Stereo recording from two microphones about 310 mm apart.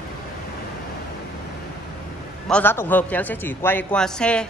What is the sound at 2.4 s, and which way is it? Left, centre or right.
A man's voice, centre.